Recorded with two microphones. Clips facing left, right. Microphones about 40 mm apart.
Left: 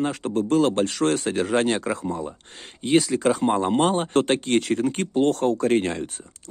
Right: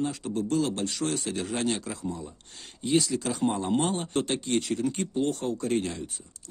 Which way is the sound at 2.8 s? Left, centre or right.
Left.